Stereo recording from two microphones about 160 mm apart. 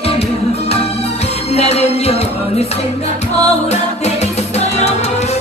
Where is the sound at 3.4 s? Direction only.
40° left (ahead or behind).